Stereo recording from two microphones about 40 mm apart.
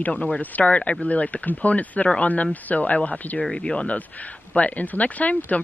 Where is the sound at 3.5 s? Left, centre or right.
Left.